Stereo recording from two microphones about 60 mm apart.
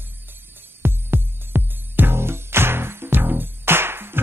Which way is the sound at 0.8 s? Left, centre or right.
Right.